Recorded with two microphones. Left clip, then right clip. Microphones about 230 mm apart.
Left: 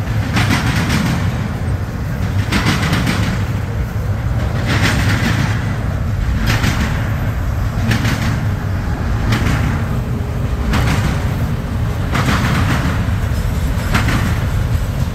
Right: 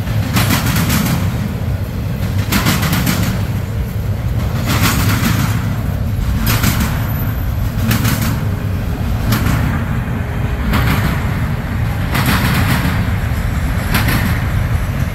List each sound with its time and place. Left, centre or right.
0.3 s vehicle: right
2.5 s vehicle: right
4.6 s vehicle: right
7.8 s bird: right
9.3 s vehicle: right
10.7 s a sound: right
12.1 s vehicle: right
13.9 s vehicle: right